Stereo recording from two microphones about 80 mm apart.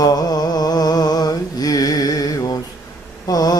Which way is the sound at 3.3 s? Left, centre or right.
Left.